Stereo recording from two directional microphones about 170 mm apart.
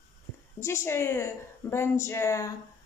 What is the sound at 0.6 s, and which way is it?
Speech, 15° left (ahead or behind).